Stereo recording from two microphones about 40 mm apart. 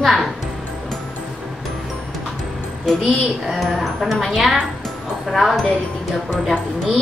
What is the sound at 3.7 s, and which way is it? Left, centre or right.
A child's voice, centre.